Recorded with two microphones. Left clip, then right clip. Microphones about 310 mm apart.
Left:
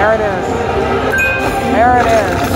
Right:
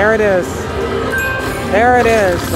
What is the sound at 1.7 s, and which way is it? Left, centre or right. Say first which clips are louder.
Speech: even; right.